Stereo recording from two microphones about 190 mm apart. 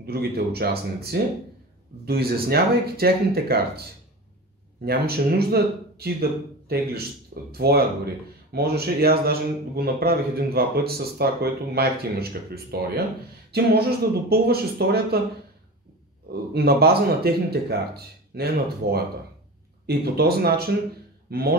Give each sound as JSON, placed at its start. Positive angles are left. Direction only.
{"t": 0.0, "sound": "a man's voice", "side_deg": -55}
{"t": 4.8, "sound": "a man's voice", "side_deg": -55}
{"t": 16.5, "sound": "a man's voice", "side_deg": -55}